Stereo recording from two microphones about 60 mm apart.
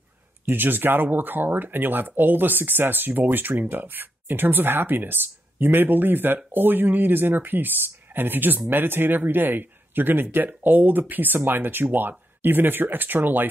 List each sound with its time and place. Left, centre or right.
0.5 s speech: right